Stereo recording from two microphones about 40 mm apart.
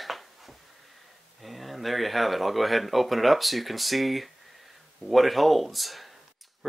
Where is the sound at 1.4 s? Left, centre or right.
Centre.